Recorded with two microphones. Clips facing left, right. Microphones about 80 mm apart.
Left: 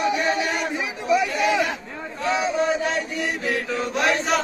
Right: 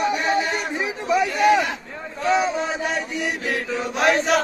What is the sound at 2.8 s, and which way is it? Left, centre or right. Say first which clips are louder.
Chant: even; centre.